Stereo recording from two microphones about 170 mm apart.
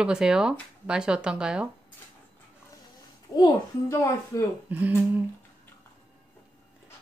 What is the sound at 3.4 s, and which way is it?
A child's voice, 20° left (ahead or behind).